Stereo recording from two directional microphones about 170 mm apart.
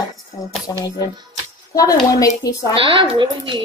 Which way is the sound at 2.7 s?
30° right (ahead or behind).